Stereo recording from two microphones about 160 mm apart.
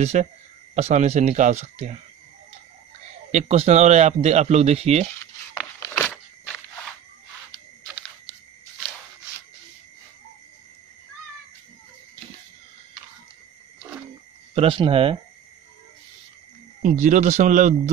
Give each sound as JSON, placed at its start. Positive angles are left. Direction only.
{"t": 0.0, "sound": "speech", "side_deg": -45}
{"t": 3.3, "sound": "speech", "side_deg": -45}
{"t": 5.9, "sound": "walk", "side_deg": 10}
{"t": 14.5, "sound": "speech", "side_deg": -35}
{"t": 16.8, "sound": "speech", "side_deg": -50}